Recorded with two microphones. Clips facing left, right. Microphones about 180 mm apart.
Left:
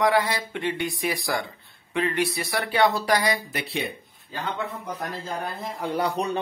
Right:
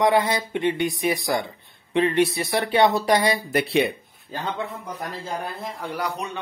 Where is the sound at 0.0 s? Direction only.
20° right (ahead or behind).